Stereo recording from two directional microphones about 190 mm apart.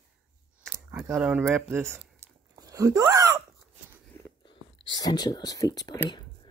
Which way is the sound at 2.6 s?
20° right (ahead or behind).